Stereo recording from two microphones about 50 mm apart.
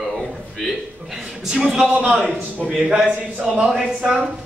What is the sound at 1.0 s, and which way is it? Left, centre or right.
Speech, centre.